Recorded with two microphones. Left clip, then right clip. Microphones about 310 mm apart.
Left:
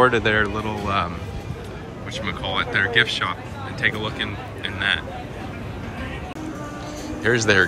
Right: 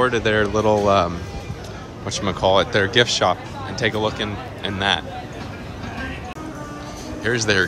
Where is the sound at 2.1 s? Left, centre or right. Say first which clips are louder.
Right 9 dB; centre.